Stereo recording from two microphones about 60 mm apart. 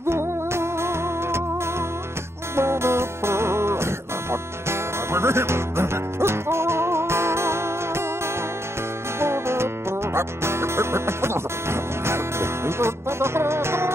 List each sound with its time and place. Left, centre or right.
0.0 s music: right
2.5 s music: right
9.2 s music: right